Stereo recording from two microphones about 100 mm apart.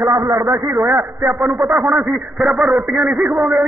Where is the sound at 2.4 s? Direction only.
Centre (ahead or behind).